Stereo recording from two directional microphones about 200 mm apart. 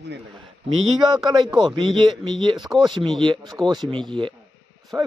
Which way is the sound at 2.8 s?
20° right (ahead or behind).